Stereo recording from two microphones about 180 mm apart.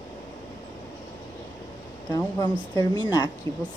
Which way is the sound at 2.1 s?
20° left (ahead or behind).